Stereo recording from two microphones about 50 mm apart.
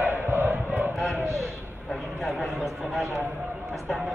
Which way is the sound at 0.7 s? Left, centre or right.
Right.